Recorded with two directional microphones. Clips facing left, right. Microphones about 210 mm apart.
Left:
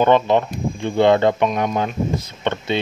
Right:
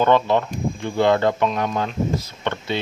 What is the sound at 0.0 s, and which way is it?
Speech, 20° left (ahead or behind).